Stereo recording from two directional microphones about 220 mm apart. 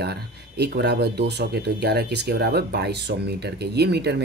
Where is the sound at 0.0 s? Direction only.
45° right (ahead or behind).